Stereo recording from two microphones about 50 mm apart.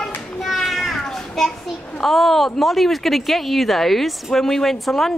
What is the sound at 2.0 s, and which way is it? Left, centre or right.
Speech, centre.